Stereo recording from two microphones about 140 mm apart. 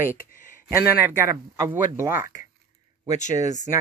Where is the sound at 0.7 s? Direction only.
15° right (ahead or behind).